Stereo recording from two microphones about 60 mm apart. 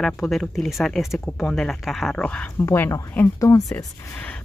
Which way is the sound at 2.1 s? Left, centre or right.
Centre.